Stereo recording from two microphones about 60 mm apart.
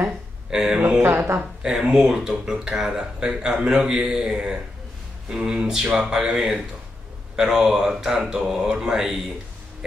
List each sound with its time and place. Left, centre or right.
0.5 s speech: centre
0.9 s speech: right
1.4 s speech: centre